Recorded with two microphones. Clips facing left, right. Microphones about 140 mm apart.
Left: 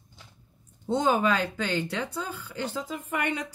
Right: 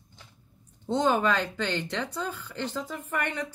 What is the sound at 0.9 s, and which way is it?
Speech, 10° left (ahead or behind).